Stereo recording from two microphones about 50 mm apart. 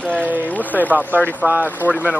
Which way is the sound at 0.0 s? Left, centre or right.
Left.